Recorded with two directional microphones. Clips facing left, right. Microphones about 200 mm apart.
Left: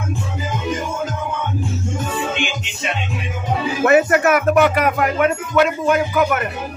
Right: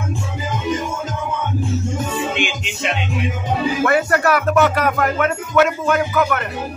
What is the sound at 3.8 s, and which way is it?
Speech, 20° left (ahead or behind).